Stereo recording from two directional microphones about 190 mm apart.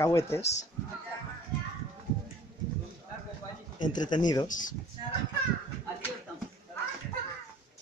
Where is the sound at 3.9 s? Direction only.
20° left (ahead or behind).